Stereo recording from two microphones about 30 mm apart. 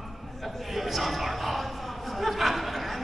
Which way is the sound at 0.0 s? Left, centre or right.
Centre.